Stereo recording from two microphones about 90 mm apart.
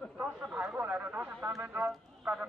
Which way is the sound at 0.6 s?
15° right (ahead or behind).